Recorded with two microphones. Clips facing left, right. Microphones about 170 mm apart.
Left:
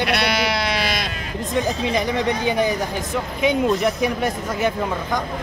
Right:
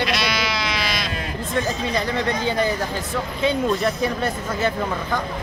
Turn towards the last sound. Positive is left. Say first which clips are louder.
# left 1 dB
turn(degrees=15)  # may be behind; listen again after turning